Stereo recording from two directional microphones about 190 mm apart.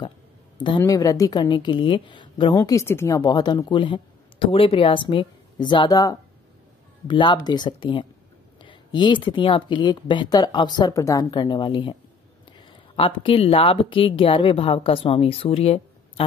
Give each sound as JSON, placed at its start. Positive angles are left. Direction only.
{"t": 0.8, "sound": "a woman's voice", "side_deg": 20}